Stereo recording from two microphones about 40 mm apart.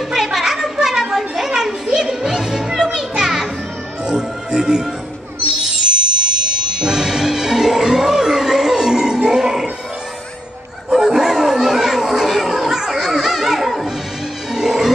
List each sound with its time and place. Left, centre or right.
0.2 s a sound: centre
1.5 s music: centre
10.9 s children playing: centre
14.5 s music: centre